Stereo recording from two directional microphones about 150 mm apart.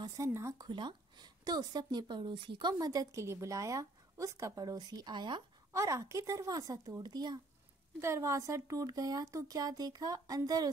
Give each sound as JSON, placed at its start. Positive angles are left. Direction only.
{"t": 0.0, "sound": "a woman's voice", "side_deg": -20}
{"t": 0.7, "sound": "a woman's voice", "side_deg": -30}
{"t": 5.7, "sound": "a woman's voice", "side_deg": -20}